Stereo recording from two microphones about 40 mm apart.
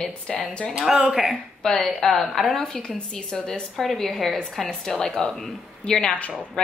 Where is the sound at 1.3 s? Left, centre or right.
Centre.